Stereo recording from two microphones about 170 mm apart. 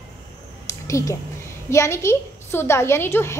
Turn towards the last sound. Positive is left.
turn(degrees=15)  # may be behind; listen again after turning